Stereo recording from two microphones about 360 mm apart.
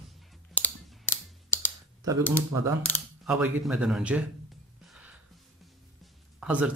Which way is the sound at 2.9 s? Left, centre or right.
Centre.